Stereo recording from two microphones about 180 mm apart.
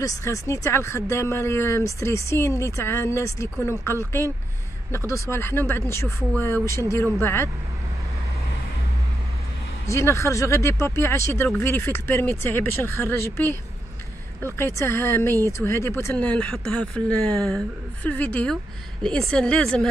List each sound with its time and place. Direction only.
0.0 s speech: 15° left (ahead or behind)
9.8 s speech: 15° left (ahead or behind)